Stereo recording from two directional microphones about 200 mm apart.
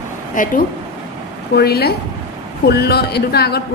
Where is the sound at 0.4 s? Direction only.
40° left (ahead or behind).